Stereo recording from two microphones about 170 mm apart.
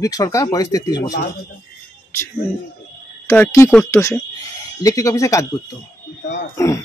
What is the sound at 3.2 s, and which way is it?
Speech, 15° left (ahead or behind).